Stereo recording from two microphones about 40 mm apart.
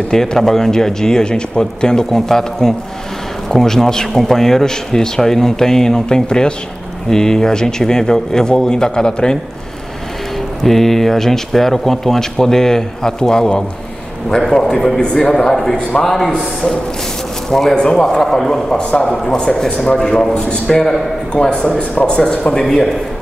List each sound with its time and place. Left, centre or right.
0.1 s speech: centre
10.3 s speech: centre
17.5 s speech: centre
18.8 s speech: left
19.0 s speech: centre
20.3 s speech: left
20.6 s speech: centre
21.6 s speech: left
22.0 s speech: left